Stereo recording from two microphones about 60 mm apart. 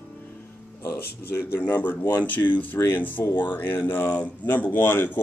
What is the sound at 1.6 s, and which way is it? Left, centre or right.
A man's voice, left.